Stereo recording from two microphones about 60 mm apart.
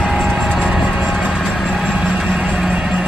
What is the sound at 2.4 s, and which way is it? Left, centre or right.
Music, centre.